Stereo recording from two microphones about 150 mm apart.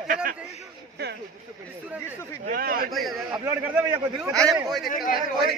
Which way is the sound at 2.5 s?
80° right.